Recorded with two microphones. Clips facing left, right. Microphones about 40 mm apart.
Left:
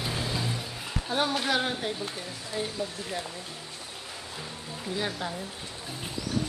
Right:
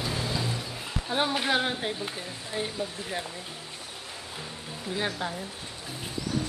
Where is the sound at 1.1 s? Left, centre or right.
Centre.